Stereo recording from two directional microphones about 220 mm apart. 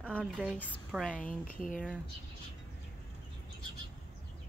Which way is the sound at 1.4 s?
40° left (ahead or behind).